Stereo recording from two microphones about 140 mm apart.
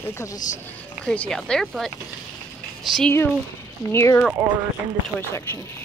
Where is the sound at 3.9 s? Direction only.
20° left (ahead or behind).